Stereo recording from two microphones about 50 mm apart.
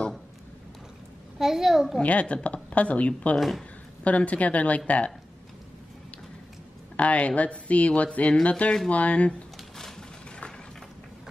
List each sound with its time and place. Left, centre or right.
1.4 s a child's voice: centre
2.0 s speech: left
3.3 s a child's voice: centre
4.0 s speech: left
7.0 s speech: left